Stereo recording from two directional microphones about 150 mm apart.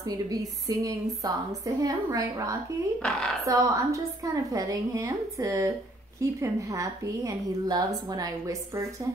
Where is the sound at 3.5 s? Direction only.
20° right (ahead or behind).